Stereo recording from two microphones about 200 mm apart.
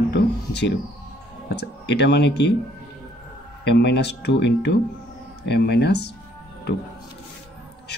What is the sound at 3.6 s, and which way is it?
Speech, 55° left (ahead or behind).